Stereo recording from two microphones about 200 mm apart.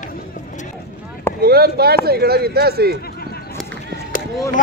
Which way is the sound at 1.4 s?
50° right (ahead or behind).